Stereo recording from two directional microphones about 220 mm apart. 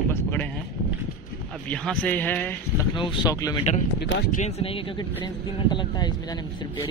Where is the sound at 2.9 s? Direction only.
20° left (ahead or behind).